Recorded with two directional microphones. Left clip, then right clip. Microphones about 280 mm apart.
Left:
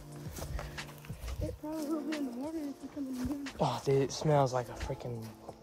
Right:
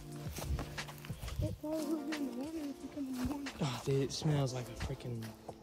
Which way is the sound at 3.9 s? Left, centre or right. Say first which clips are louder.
Left 6 dB; centre.